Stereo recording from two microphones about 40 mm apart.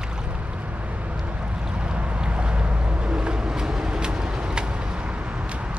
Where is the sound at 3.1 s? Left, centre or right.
Centre.